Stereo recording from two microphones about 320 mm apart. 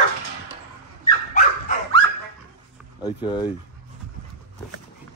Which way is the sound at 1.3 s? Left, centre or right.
Left.